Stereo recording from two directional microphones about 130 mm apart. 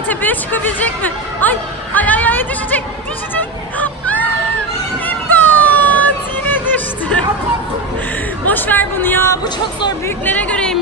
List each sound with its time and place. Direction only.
0.1 s speech: 15° left (ahead or behind)
3.8 s a sound: 10° left (ahead or behind)
8.5 s speech: 15° left (ahead or behind)
9.4 s speech: 35° left (ahead or behind)
10.0 s speech: 15° left (ahead or behind)